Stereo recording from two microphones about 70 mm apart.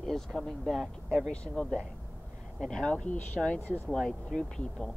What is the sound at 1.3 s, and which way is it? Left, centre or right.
A woman's voice, centre.